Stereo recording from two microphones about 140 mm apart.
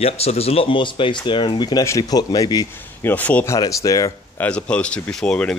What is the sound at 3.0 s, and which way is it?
Speech, 10° left (ahead or behind).